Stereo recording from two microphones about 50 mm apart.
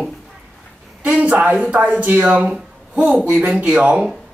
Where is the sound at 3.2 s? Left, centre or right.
Right.